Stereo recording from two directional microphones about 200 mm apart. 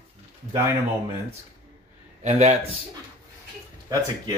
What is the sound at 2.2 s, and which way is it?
Speech, 35° right (ahead or behind).